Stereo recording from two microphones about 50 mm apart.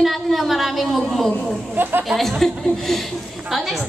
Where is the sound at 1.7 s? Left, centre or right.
Right.